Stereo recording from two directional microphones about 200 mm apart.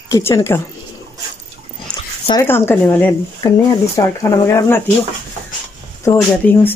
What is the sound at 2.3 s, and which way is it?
Speech, 15° left (ahead or behind).